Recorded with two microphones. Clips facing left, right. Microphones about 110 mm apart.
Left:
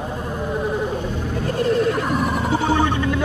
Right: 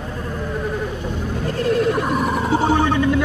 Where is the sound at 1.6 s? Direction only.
Centre (ahead or behind).